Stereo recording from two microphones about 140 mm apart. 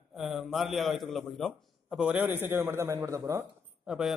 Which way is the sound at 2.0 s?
10° right (ahead or behind).